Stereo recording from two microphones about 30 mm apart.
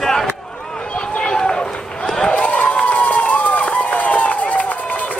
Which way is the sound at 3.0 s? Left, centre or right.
Left.